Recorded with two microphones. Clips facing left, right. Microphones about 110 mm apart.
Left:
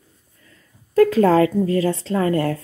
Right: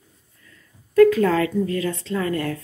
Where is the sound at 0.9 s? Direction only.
30° left (ahead or behind).